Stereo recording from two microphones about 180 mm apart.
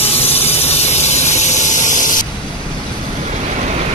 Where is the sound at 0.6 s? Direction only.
35° left (ahead or behind).